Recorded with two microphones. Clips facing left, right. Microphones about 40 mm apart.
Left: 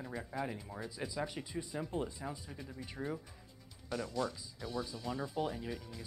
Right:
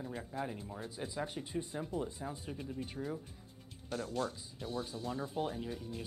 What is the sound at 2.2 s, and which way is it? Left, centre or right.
Speech, centre.